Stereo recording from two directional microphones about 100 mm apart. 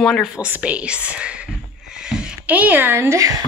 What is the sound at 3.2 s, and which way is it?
Speech, 35° right (ahead or behind).